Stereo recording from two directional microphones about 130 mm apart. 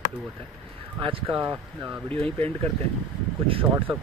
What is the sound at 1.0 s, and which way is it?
Speech, 40° right (ahead or behind).